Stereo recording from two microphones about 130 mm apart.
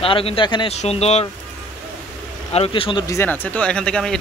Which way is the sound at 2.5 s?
45° left (ahead or behind).